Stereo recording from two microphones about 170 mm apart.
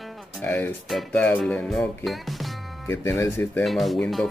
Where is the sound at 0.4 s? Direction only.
10° left (ahead or behind).